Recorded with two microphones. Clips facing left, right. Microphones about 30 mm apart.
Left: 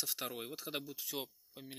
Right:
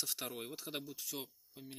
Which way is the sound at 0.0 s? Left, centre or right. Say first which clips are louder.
Left 1 dB; centre.